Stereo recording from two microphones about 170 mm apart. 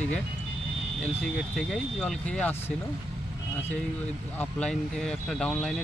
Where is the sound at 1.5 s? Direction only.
5° left (ahead or behind).